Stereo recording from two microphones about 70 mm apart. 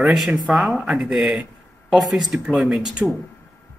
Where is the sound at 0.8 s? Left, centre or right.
Centre.